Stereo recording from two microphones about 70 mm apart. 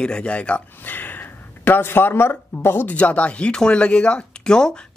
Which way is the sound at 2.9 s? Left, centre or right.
Centre.